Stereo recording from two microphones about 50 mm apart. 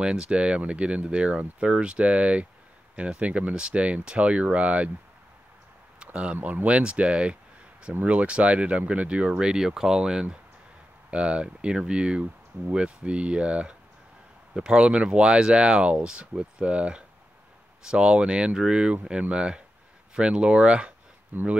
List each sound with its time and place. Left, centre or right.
0.0 s speech: centre
6.3 s speech: right
21.3 s speech: right